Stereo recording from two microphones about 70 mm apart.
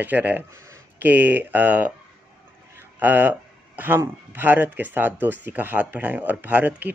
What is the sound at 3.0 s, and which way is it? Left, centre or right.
Speech, right.